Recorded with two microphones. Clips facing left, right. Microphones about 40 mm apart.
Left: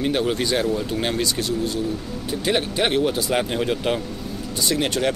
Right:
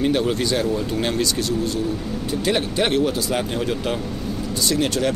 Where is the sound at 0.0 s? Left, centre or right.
Centre.